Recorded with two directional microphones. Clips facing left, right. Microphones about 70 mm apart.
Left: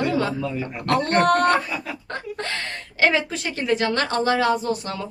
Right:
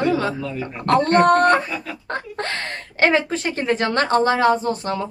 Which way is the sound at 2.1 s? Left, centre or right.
Right.